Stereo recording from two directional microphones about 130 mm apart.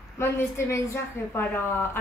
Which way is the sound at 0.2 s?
20° left (ahead or behind).